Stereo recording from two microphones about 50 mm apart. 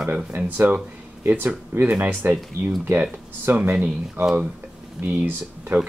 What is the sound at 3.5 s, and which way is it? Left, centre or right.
Speech, right.